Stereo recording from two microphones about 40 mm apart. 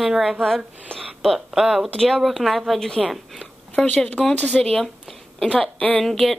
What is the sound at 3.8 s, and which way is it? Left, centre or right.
Speech, centre.